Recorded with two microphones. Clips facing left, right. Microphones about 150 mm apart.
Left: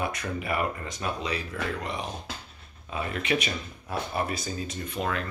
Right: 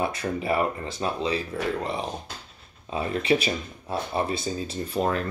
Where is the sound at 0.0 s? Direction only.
30° right (ahead or behind).